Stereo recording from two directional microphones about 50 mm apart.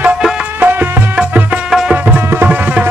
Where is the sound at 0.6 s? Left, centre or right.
Right.